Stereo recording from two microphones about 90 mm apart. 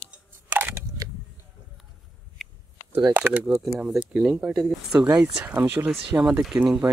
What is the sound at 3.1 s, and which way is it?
Speech, 20° right (ahead or behind).